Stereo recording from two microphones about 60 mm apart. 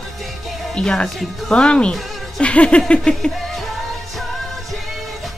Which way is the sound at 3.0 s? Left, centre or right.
Centre.